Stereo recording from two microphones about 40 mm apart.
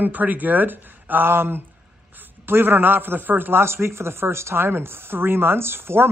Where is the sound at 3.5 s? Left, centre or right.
Right.